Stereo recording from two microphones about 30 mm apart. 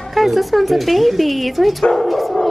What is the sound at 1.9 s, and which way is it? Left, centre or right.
Dog, centre.